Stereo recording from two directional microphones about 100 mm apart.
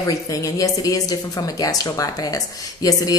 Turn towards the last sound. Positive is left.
turn(degrees=35)  # may be behind; listen again after turning